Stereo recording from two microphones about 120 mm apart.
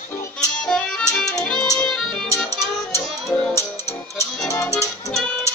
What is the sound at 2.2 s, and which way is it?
Music, 20° left (ahead or behind).